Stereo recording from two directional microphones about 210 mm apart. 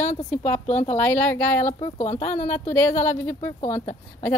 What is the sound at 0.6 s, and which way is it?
Speech, 35° left (ahead or behind).